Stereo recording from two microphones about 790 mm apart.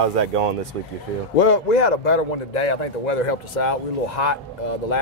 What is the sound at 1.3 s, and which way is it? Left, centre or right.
A man's voice, left.